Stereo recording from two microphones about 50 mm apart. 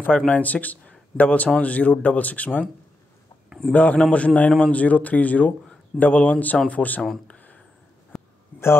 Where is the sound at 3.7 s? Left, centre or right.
Left.